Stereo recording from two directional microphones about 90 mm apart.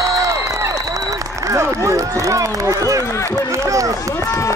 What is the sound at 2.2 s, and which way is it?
Run, 35° right (ahead or behind).